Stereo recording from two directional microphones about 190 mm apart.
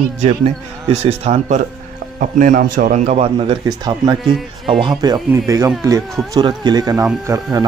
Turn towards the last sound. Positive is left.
turn(degrees=-20)  # may be behind; listen again after turning